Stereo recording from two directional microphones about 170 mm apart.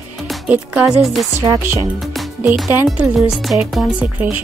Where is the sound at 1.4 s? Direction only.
15° right (ahead or behind).